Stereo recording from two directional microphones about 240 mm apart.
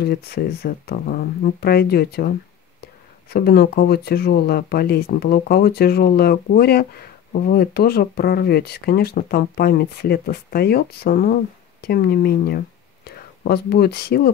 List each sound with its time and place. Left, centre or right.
0.0 s speech: left